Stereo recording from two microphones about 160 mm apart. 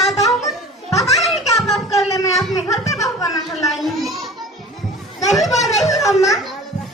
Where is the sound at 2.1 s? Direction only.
20° left (ahead or behind).